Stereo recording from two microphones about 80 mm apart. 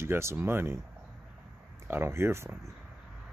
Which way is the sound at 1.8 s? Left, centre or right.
Right.